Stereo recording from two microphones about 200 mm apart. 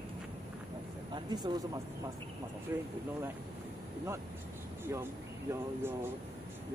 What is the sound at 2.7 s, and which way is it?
Speech, 15° right (ahead or behind).